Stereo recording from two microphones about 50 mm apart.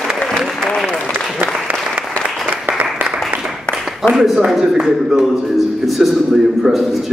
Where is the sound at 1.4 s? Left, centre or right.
Right.